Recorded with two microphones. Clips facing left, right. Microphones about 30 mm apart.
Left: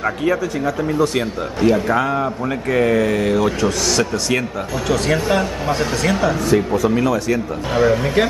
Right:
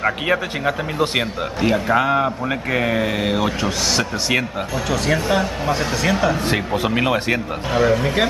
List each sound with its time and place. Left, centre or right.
0.2 s speech: right
1.6 s speech: centre
4.8 s speech: centre
6.4 s a man's voice: right
7.7 s speech: centre